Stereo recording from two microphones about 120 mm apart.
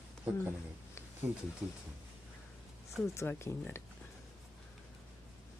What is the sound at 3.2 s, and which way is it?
Speech, 20° left (ahead or behind).